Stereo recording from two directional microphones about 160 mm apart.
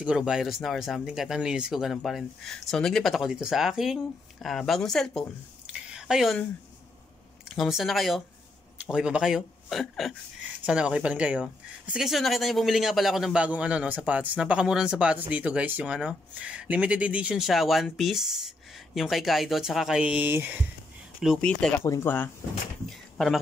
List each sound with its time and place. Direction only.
0.0 s speech: 5° right (ahead or behind)
5.7 s a sound: 5° right (ahead or behind)
7.4 s speech: centre (ahead or behind)
21.2 s speech: centre (ahead or behind)
21.8 s speech: 15° left (ahead or behind)
22.8 s a sound: centre (ahead or behind)